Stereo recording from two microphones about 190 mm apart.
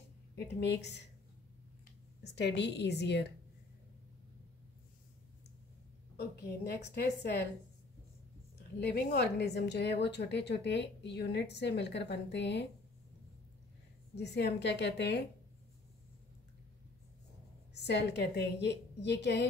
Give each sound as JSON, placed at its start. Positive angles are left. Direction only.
{"t": 0.4, "sound": "a woman's voice", "side_deg": 65}
{"t": 2.3, "sound": "a woman's voice", "side_deg": 65}
{"t": 6.1, "sound": "a woman's voice", "side_deg": 55}
{"t": 8.5, "sound": "a woman's voice", "side_deg": 60}
{"t": 14.1, "sound": "a woman's voice", "side_deg": 65}
{"t": 17.7, "sound": "a woman's voice", "side_deg": 65}